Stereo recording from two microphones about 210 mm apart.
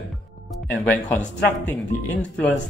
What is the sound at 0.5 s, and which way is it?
Speech, 5° left (ahead or behind).